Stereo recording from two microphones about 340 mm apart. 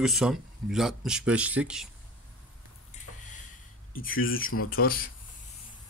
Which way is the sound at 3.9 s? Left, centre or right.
Left.